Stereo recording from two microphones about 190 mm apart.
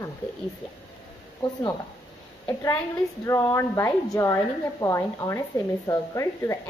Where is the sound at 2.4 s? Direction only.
10° left (ahead or behind).